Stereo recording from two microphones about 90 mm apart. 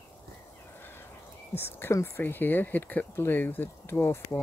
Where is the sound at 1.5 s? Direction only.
25° left (ahead or behind).